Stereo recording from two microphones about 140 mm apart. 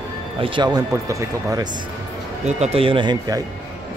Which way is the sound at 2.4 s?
50° right (ahead or behind).